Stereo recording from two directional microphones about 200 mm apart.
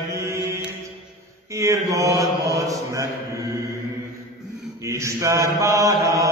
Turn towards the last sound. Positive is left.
turn(degrees=-15)  # may be behind; listen again after turning